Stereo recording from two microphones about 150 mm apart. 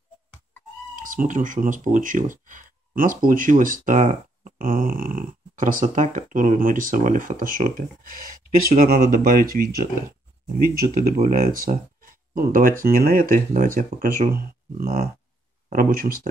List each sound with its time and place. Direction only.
0.9 s speech: 60° right (ahead or behind)
14.4 s speech: 85° right
15.7 s speech: 70° right (ahead or behind)